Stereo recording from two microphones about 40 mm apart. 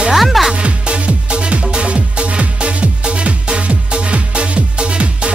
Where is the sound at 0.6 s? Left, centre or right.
Right.